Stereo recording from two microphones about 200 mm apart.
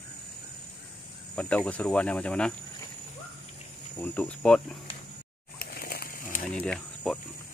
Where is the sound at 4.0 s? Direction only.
5° left (ahead or behind).